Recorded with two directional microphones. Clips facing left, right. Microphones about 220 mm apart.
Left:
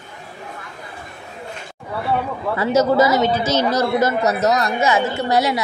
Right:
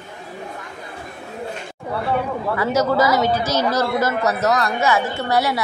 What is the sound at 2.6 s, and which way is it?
A woman's voice, 25° left (ahead or behind).